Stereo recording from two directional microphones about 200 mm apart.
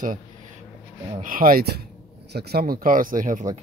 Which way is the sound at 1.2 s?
45° right (ahead or behind).